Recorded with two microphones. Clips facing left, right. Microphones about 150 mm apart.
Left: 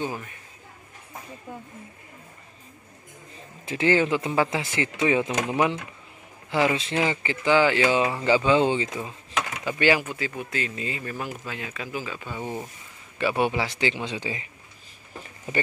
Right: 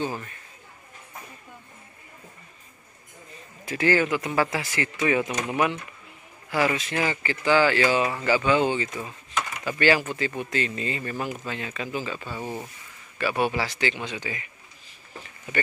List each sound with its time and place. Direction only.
0.0 s speech: 10° left (ahead or behind)
3.6 s speech: 20° left (ahead or behind)
12.4 s speech: 5° right (ahead or behind)
13.2 s speech: 20° left (ahead or behind)